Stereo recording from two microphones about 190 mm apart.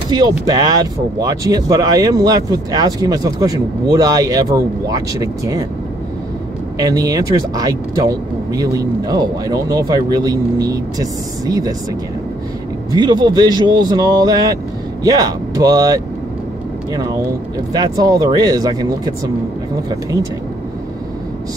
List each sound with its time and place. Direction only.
0.1 s speech: 20° right (ahead or behind)
6.8 s speech: 20° right (ahead or behind)
12.9 s speech: 20° right (ahead or behind)
17.7 s speech: 20° right (ahead or behind)